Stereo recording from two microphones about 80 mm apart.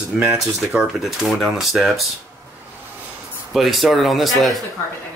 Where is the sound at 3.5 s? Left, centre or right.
Centre.